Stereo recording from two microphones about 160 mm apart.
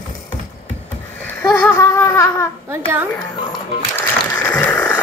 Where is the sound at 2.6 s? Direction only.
15° right (ahead or behind).